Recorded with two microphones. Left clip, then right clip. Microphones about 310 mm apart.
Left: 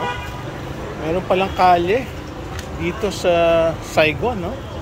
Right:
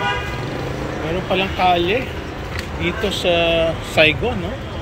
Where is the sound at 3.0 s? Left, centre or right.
Left.